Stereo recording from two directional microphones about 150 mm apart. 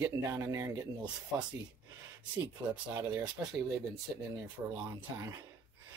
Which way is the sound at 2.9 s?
25° right (ahead or behind).